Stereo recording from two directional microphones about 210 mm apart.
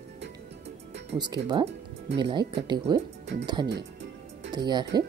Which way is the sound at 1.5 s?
20° right (ahead or behind).